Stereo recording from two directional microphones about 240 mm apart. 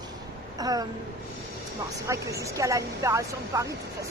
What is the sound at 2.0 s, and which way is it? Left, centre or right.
Speech, centre.